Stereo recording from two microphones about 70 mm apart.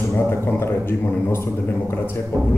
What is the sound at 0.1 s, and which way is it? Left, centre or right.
Speech, left.